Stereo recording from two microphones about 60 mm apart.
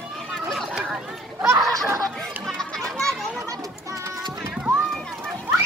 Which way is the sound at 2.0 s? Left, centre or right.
Centre.